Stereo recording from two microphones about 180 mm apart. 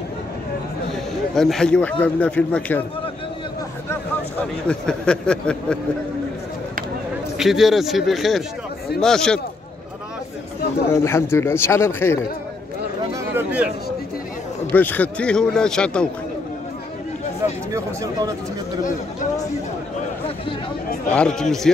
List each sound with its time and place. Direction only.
1.3 s speech: centre (ahead or behind)
3.9 s speech: 10° left (ahead or behind)
7.3 s speech: centre (ahead or behind)
10.9 s speech: 15° left (ahead or behind)
13.1 s a sound: 15° right (ahead or behind)
14.7 s speech: 10° left (ahead or behind)
17.7 s speech: 20° right (ahead or behind)
21.1 s speech: 5° left (ahead or behind)